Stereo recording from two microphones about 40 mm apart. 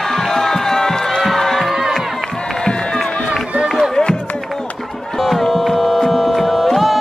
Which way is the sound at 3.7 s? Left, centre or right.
Centre.